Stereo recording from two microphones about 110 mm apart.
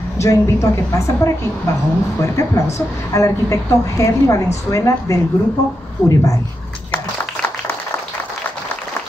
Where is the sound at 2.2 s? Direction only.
30° left (ahead or behind).